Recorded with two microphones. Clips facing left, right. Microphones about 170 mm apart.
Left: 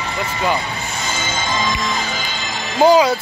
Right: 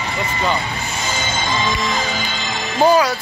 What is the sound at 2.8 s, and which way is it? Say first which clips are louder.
Speech: left 2 dB; 20° left (ahead or behind).